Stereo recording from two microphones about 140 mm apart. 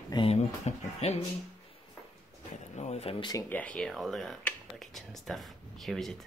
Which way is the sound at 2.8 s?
50° left (ahead or behind).